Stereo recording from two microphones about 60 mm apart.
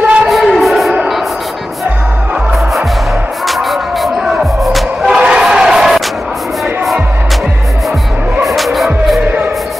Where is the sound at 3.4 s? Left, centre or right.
Centre.